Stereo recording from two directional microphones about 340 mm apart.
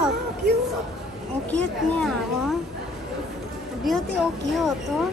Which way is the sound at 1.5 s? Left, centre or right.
Centre.